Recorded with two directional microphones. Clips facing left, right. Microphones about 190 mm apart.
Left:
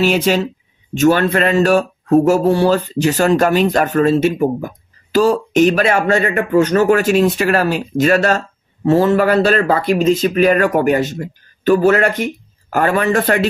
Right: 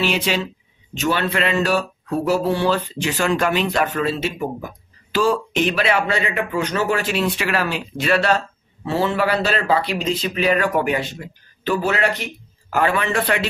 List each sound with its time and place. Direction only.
0.0 s speech: 45° left (ahead or behind)